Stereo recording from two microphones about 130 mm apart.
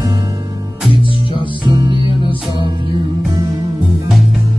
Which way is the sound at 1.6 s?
35° right (ahead or behind).